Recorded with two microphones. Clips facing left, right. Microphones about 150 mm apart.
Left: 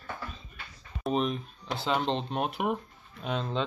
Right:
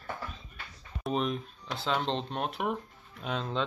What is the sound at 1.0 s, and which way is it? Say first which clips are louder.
Speech: left 2 dB; centre (ahead or behind).